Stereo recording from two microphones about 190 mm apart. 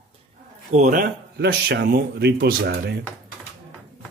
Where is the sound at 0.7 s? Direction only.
40° right (ahead or behind).